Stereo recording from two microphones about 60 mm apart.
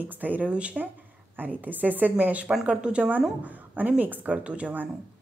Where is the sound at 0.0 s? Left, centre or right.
Right.